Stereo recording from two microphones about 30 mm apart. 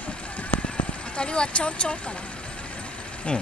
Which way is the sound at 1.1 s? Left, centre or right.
Left.